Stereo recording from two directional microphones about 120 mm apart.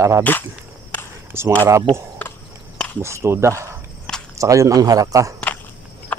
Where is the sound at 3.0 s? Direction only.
25° right (ahead or behind).